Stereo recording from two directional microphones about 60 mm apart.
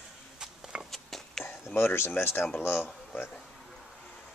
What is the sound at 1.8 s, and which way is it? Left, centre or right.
Speech, left.